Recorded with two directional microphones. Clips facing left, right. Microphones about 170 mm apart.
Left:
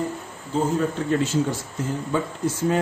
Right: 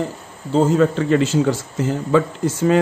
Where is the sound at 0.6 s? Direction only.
90° right.